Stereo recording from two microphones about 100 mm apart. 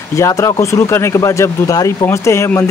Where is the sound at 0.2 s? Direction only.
30° left (ahead or behind).